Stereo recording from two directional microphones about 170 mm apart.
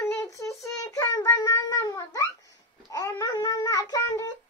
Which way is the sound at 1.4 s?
20° left (ahead or behind).